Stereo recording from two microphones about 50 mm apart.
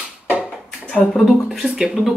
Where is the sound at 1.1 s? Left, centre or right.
Centre.